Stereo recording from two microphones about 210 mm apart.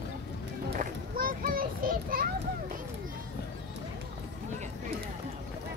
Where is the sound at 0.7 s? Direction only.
40° right (ahead or behind).